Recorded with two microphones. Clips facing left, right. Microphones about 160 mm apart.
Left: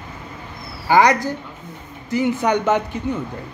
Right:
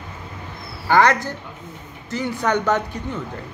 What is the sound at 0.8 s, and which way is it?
Speech, 10° left (ahead or behind).